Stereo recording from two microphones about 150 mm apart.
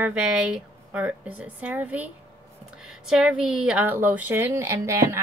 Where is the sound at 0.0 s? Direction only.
5° right (ahead or behind).